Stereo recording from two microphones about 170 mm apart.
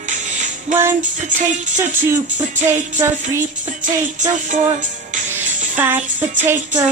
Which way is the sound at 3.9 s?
45° right (ahead or behind).